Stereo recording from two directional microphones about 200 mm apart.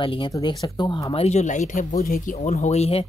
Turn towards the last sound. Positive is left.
turn(degrees=30)  # may be behind; listen again after turning